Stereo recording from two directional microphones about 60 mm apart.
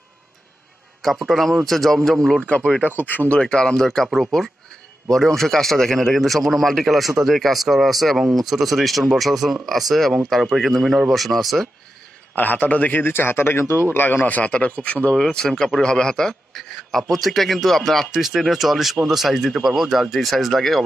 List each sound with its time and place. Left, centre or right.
1.0 s a man's voice: centre
2.5 s speech: left
2.9 s a man's voice: left
3.3 s a man's voice: centre
12.4 s a man's voice: left
15.1 s a man's voice: centre